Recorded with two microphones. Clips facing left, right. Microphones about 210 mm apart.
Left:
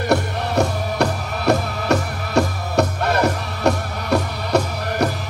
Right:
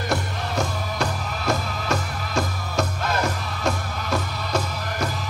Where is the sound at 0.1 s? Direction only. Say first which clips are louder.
Left 8 dB; 65° left (ahead or behind).